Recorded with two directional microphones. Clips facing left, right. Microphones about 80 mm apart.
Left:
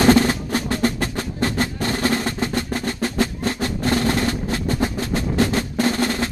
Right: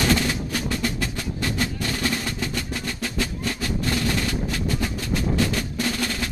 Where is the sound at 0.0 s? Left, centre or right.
Left.